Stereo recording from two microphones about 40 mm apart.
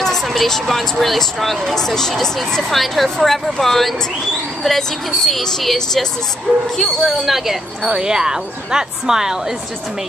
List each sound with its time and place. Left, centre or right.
0.0 s speech: centre
6.5 s speech: centre
6.8 s speech: centre